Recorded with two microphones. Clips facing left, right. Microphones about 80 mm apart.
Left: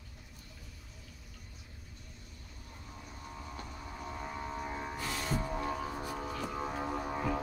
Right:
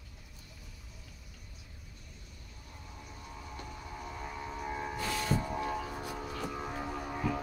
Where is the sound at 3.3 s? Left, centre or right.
Left.